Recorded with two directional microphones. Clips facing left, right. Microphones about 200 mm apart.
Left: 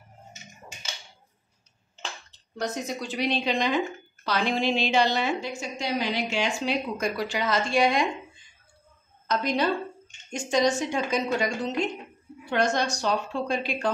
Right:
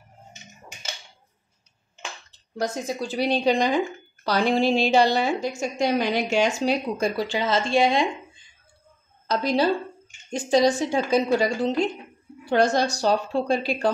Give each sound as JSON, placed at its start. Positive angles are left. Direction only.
{"t": 2.6, "sound": "a woman's voice", "side_deg": -30}
{"t": 9.3, "sound": "a woman's voice", "side_deg": -35}